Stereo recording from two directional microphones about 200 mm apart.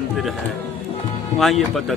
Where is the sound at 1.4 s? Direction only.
Centre (ahead or behind).